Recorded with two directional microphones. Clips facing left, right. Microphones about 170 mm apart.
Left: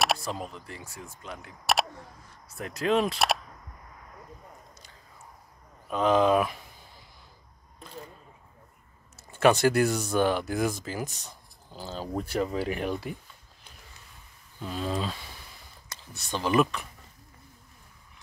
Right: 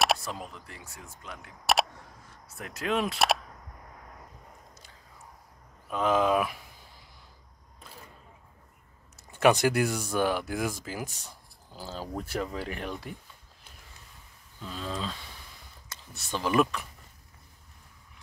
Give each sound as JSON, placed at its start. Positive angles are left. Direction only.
{"t": 0.0, "sound": "a sound", "side_deg": 0}
{"t": 0.3, "sound": "speech", "side_deg": 35}
{"t": 0.7, "sound": "speech", "side_deg": 0}
{"t": 1.4, "sound": "single-lens reflex camera", "side_deg": 0}
{"t": 2.4, "sound": "speech", "side_deg": 0}
{"t": 5.9, "sound": "speech", "side_deg": -5}
{"t": 9.3, "sound": "speech", "side_deg": -15}
{"t": 14.6, "sound": "speech", "side_deg": 15}
{"t": 15.9, "sound": "speech", "side_deg": 0}